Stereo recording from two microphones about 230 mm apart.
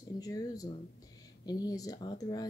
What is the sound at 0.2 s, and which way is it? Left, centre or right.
Speech, centre.